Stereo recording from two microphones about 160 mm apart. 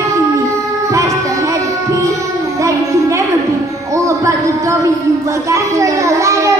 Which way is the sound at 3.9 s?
20° right (ahead or behind).